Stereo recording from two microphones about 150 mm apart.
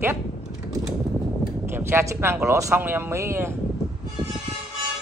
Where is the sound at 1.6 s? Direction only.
15° right (ahead or behind).